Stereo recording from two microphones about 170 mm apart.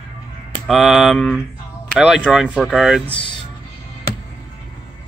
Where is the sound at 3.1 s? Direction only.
30° left (ahead or behind).